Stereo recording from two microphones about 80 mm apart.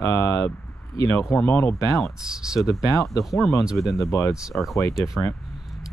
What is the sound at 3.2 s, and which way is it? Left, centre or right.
Speech, centre.